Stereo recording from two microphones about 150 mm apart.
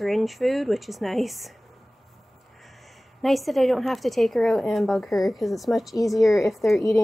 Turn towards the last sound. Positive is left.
turn(degrees=0)  # may be behind; listen again after turning